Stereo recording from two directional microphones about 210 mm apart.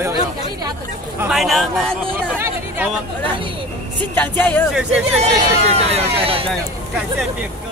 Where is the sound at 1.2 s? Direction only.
Centre (ahead or behind).